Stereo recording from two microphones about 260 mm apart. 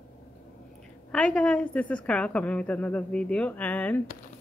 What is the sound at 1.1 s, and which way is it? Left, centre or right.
A woman's voice, centre.